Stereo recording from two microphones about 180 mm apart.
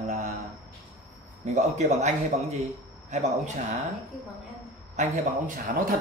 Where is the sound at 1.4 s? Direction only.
40° right (ahead or behind).